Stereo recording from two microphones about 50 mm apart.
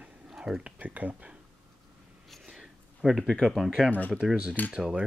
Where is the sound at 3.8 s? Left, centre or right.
Left.